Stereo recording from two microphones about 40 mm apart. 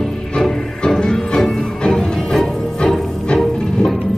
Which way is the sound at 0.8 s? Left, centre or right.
Centre.